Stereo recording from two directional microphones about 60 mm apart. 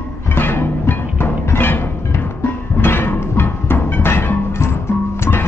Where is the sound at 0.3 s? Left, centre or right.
Left.